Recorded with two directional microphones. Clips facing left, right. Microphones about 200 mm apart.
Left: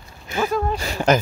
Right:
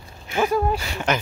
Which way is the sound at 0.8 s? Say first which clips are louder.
Left 6 dB; 40° left (ahead or behind).